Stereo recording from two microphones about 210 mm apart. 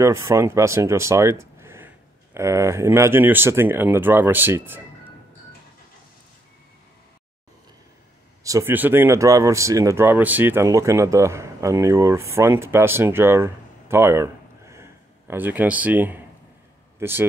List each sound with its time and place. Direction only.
0.0 s speech: 15° right (ahead or behind)
8.5 s speech: 15° right (ahead or behind)